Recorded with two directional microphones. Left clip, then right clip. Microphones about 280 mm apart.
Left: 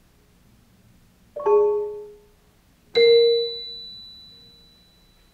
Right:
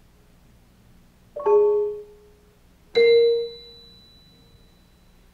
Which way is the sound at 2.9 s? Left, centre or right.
Centre.